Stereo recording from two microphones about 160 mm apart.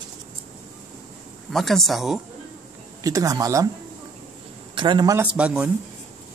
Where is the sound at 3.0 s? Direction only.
20° right (ahead or behind).